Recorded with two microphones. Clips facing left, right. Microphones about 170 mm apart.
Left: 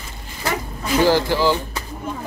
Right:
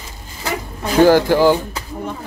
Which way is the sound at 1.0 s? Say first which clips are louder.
Right 6 dB; 50° right (ahead or behind).